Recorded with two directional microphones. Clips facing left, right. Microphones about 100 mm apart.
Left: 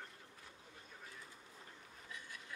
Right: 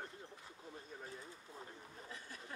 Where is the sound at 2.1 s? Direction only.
35° right (ahead or behind).